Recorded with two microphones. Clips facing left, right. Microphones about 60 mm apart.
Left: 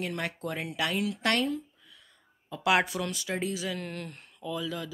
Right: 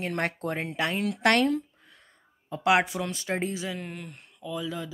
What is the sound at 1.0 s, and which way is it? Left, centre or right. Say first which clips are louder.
Speech: right 9 dB; right.